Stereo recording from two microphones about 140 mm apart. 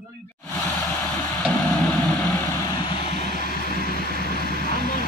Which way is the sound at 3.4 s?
90° left.